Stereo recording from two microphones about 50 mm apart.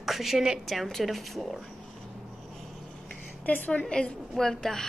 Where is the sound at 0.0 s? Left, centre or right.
Centre.